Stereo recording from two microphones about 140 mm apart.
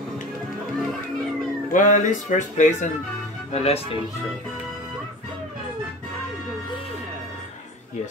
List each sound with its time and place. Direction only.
1.7 s speech: 65° left (ahead or behind)
3.5 s speech: 45° left (ahead or behind)